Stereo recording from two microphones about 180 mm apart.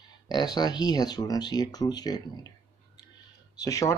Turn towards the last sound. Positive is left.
turn(degrees=20)  # may be behind; listen again after turning